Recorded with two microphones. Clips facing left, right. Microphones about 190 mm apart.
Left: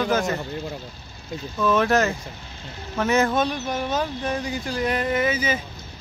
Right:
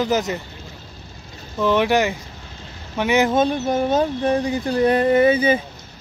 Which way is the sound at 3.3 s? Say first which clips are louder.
Right 6 dB; 25° right (ahead or behind).